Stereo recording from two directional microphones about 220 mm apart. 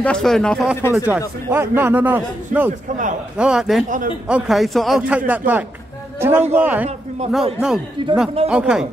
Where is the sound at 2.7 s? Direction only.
35° right (ahead or behind).